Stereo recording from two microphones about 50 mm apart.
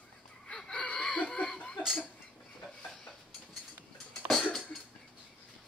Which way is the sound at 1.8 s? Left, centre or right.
Centre.